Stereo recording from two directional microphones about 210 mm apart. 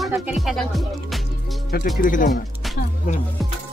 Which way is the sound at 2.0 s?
40° left (ahead or behind).